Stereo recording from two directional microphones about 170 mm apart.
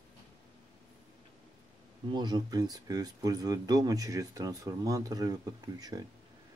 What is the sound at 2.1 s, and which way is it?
Speech, 25° right (ahead or behind).